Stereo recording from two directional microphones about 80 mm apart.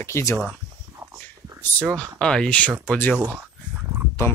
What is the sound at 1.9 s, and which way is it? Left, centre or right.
Speech, centre.